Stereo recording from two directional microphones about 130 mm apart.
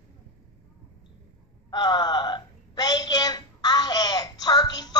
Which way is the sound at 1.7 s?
30° left (ahead or behind).